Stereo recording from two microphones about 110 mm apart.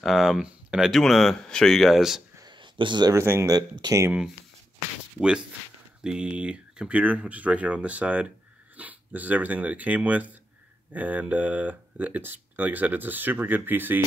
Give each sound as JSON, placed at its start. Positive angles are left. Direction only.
{"t": 0.0, "sound": "speech", "side_deg": 0}
{"t": 2.3, "sound": "a sound", "side_deg": -40}
{"t": 3.2, "sound": "speech", "side_deg": -25}
{"t": 3.5, "sound": "speech", "side_deg": -40}
{"t": 6.0, "sound": "speech", "side_deg": -10}